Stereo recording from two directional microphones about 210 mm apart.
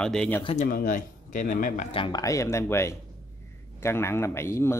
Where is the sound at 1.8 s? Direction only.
25° left (ahead or behind).